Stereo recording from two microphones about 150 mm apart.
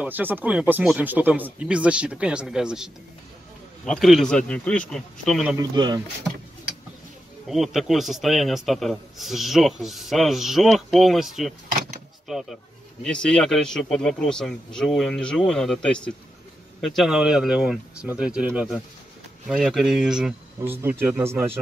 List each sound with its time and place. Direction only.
0.0 s a man's voice: 10° right (ahead or behind)
5.6 s speech: 25° right (ahead or behind)
7.4 s a man's voice: centre (ahead or behind)